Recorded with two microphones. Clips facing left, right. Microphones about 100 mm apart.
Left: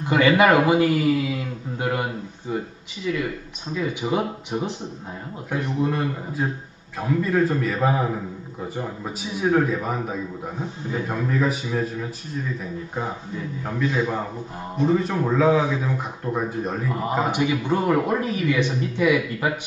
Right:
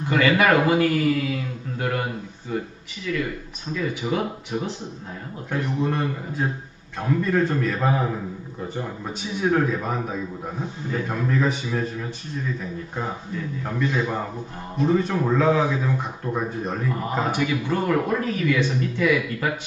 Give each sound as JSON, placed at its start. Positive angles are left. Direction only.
{"t": 0.1, "sound": "a man's voice", "side_deg": 20}
{"t": 5.8, "sound": "speech", "side_deg": 0}
{"t": 13.7, "sound": "speech", "side_deg": 5}
{"t": 16.9, "sound": "a man's voice", "side_deg": 15}